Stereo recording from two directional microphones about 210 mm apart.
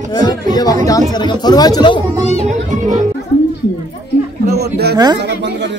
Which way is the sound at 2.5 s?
35° right (ahead or behind).